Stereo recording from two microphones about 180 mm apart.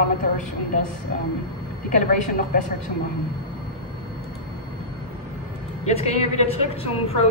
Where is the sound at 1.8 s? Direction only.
45° left (ahead or behind).